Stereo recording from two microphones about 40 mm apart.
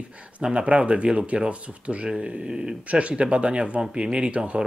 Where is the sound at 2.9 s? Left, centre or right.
Right.